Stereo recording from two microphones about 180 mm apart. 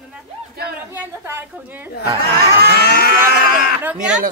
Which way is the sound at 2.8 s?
70° left (ahead or behind).